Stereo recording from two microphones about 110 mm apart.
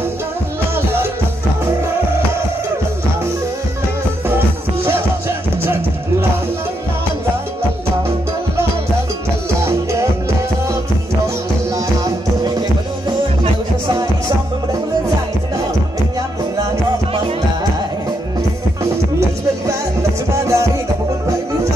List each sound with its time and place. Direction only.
9.7 s music: 25° right (ahead or behind)
20.3 s music: 25° right (ahead or behind)